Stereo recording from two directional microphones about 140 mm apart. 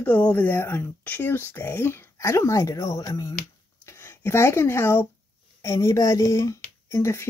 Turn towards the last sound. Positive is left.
turn(degrees=20)  # may be behind; listen again after turning